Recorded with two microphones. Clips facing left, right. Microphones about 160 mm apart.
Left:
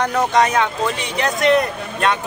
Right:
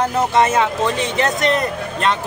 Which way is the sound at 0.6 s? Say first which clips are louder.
Right 2 dB; centre (ahead or behind).